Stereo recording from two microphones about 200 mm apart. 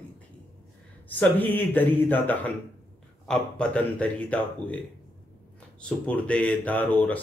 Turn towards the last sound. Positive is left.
turn(degrees=5)  # may be behind; listen again after turning